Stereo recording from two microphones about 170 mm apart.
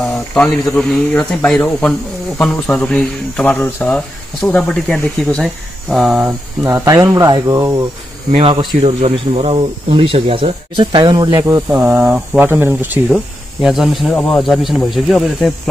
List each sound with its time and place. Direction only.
0.0 s speech: 5° left (ahead or behind)
6.7 s speech: 20° right (ahead or behind)
8.3 s speech: 35° right (ahead or behind); by 15.5 s centre (ahead or behind)